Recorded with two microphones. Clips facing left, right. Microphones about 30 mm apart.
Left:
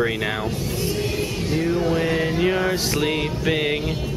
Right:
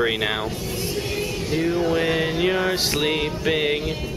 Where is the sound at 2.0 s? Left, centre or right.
Centre.